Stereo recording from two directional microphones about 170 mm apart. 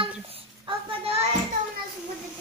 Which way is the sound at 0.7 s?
30° right (ahead or behind).